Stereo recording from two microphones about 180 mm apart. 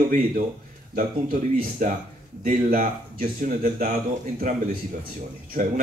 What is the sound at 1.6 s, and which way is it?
Speech, 45° right (ahead or behind).